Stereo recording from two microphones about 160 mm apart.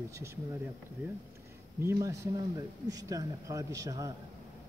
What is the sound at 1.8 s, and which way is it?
Speech, 20° right (ahead or behind).